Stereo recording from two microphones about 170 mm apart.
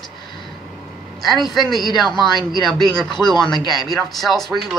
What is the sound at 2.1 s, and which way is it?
Speech, 25° left (ahead or behind).